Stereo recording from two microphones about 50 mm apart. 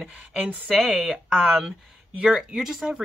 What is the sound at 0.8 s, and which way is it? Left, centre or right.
Speech, centre.